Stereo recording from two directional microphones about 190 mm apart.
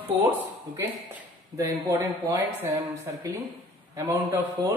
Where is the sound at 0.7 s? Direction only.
10° right (ahead or behind).